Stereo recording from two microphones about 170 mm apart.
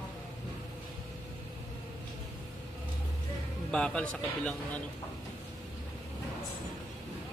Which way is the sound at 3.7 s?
5° left (ahead or behind).